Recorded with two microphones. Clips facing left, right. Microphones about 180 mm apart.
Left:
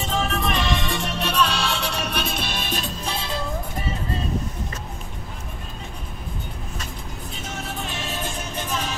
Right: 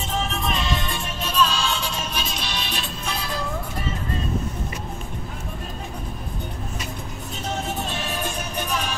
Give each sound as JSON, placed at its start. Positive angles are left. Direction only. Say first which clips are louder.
{"t": 0.1, "sound": "music", "louder": "left 2 dB", "side_deg": 70}
{"t": 3.1, "sound": "music", "louder": "even", "side_deg": 25}
{"t": 8.0, "sound": "music", "louder": "right 1 dB", "side_deg": 25}
{"t": 8.3, "sound": "music", "louder": "right 2 dB", "side_deg": -15}